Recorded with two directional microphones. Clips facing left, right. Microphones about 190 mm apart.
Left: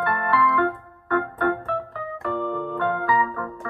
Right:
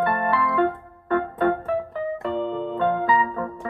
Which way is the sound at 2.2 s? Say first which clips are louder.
Left 2 dB; 20° right (ahead or behind).